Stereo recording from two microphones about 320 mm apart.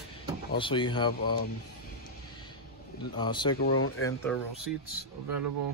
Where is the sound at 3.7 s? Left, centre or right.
Left.